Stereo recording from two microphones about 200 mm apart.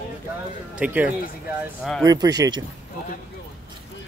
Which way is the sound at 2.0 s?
20° right (ahead or behind).